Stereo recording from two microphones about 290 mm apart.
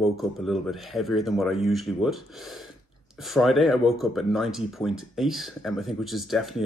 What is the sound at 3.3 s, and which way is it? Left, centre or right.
Speech, centre.